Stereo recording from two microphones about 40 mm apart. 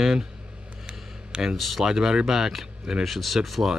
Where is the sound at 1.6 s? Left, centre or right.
Centre.